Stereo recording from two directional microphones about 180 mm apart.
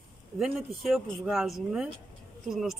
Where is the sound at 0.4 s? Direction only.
Centre (ahead or behind).